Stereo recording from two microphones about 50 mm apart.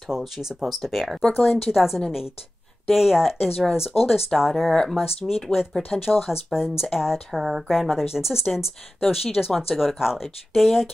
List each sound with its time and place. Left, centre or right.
0.1 s speech: centre